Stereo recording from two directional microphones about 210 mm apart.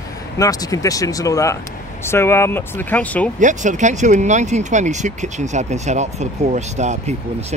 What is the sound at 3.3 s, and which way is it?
Speech, 35° right (ahead or behind).